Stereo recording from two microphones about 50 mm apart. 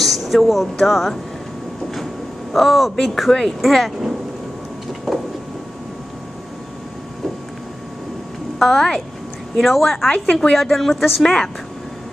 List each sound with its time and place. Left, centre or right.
0.0 s speech: centre
2.5 s speech: centre
5.1 s vehicle: centre
8.5 s speech: centre
11.2 s speech: centre